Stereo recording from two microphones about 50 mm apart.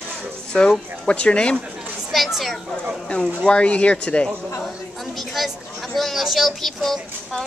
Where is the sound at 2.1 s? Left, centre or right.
Centre.